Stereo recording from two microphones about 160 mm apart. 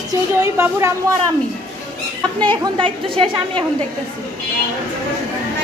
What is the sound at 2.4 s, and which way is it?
Speech, 30° right (ahead or behind).